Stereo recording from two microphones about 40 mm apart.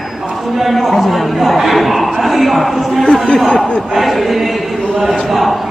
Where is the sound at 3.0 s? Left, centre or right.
Centre.